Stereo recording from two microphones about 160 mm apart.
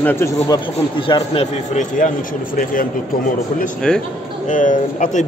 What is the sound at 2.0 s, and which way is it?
Speech, 55° left (ahead or behind).